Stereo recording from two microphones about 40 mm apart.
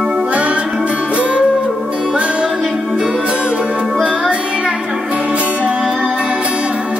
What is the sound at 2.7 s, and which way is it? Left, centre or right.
Music, centre.